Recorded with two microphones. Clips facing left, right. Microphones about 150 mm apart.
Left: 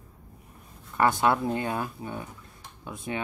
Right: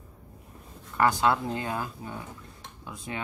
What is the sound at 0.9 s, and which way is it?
Speech, 20° left (ahead or behind).